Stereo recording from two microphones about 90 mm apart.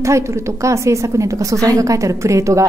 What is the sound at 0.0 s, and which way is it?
Speech, 35° right (ahead or behind).